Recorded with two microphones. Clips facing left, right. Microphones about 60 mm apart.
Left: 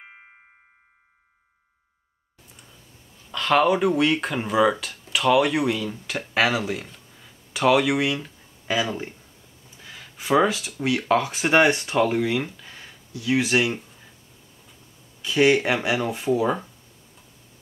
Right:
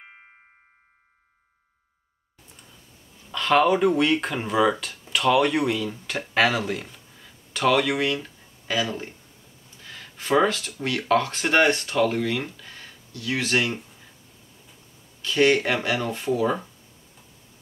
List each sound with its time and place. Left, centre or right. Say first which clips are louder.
0.0 s music: left 1 dB; centre
3.3 s speech: even; centre
15.2 s speech: left 1 dB; centre